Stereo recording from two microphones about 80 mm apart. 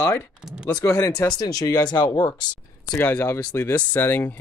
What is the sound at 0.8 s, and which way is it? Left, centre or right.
Speech, left.